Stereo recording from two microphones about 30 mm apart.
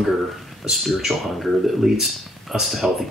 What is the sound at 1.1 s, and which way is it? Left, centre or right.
Speech, right.